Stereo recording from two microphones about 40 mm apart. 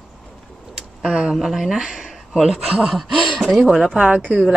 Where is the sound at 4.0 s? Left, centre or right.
Right.